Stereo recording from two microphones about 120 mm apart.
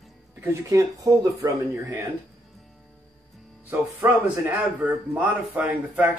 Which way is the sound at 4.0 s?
15° right (ahead or behind).